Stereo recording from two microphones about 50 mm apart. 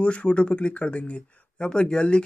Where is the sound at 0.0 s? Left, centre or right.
Left.